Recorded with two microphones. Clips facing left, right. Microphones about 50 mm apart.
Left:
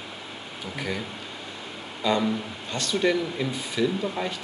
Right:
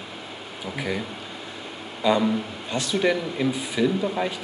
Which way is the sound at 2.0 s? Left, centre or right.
Centre.